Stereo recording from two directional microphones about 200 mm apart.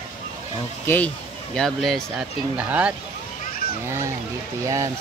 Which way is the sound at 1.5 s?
Centre (ahead or behind).